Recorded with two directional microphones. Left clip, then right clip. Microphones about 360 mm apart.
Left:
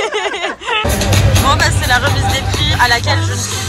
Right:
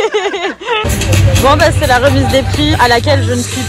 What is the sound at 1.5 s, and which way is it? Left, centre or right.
Speech, centre.